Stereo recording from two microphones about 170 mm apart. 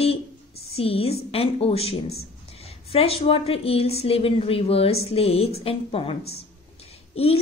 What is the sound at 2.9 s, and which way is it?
A woman's voice, 35° left (ahead or behind).